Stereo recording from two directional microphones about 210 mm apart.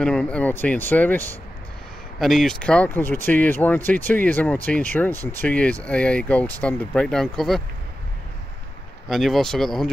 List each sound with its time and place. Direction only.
0.0 s speech: 5° left (ahead or behind)
9.1 s speech: centre (ahead or behind)